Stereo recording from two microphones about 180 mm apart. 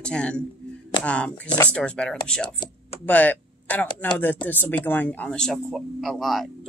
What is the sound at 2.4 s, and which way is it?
Speech, 25° left (ahead or behind).